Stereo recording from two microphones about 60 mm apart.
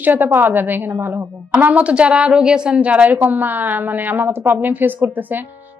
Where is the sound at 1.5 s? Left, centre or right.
Right.